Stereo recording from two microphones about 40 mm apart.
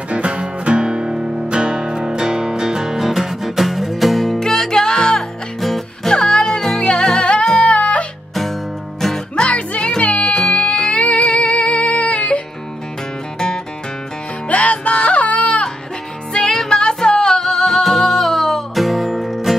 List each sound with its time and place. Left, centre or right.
0.1 s music: right; by 4.4 s centre
4.4 s music: centre; by 8.1 s left
9.0 s music: centre
9.5 s music: left
14.5 s music: left
16.3 s music: centre
17.4 s music: centre